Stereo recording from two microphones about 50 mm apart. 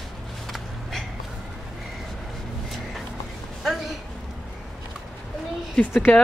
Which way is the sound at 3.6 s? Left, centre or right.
Centre.